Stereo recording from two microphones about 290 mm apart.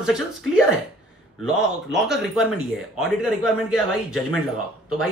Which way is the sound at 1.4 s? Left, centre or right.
Centre.